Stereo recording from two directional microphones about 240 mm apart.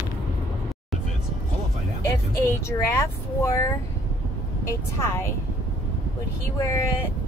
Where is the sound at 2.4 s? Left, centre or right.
Centre.